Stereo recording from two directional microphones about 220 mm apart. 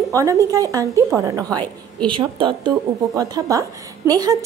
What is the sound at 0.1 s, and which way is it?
A woman's voice, 15° right (ahead or behind).